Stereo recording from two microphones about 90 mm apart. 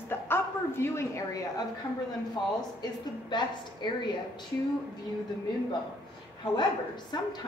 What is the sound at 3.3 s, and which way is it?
Speech, 55° left (ahead or behind).